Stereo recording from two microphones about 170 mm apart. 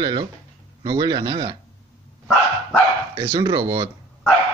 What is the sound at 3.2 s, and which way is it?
Speech, 25° right (ahead or behind).